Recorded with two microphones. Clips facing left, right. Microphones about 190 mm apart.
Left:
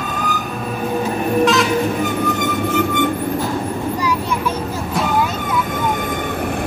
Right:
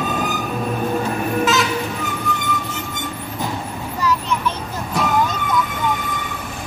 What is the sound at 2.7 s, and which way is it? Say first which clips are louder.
Music: left 12 dB; 60° left (ahead or behind).